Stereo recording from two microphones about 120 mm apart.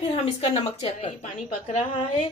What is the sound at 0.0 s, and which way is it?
A woman's voice, 55° left (ahead or behind).